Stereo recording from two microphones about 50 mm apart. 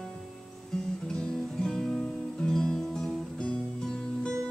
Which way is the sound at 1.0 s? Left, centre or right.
Centre.